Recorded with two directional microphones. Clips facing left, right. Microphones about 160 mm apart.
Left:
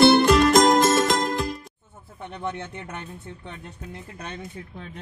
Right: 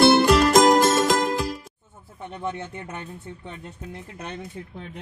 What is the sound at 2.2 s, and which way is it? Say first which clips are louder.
Speech: right 1 dB; 10° right (ahead or behind).